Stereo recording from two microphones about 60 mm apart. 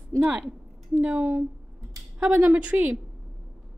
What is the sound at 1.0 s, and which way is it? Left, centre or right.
A woman's voice, right.